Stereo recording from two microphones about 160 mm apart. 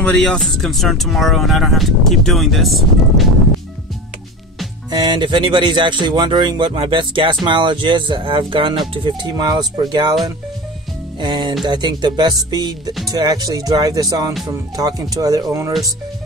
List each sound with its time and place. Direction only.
0.0 s speech: 5° left (ahead or behind)
4.9 s speech: 25° right (ahead or behind)
11.1 s speech: 30° right (ahead or behind)